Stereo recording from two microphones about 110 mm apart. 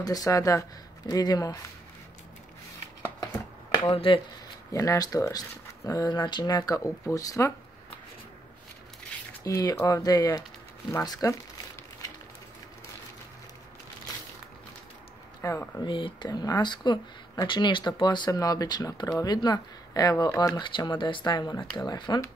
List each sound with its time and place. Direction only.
0.0 s speech: 35° left (ahead or behind)
3.9 s speech: 55° left (ahead or behind)
4.7 s speech: 35° left (ahead or behind)
9.4 s speech: 35° left (ahead or behind)
15.4 s speech: 30° left (ahead or behind)
15.8 s speech: 45° left (ahead or behind)